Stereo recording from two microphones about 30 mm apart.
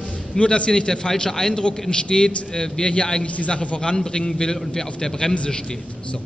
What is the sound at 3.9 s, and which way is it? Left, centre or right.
A man's voice, left.